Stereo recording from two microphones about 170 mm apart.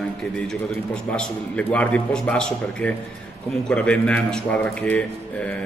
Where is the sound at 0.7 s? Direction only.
10° left (ahead or behind).